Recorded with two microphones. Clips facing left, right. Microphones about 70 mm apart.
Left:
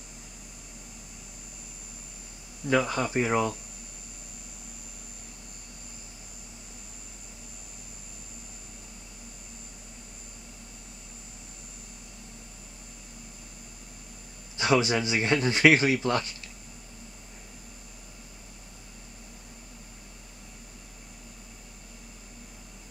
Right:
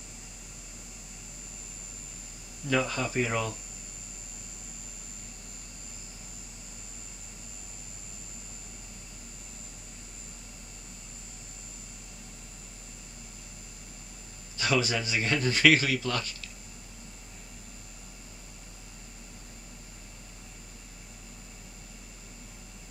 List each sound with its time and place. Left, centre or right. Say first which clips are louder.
2.6 s speech: left 3 dB; centre
2.9 s a man's voice: left 3 dB; left
14.6 s a man's voice: left 4 dB; left